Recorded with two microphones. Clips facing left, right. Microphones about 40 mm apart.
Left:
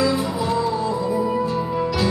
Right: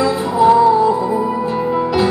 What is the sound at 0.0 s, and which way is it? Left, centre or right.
Music, right.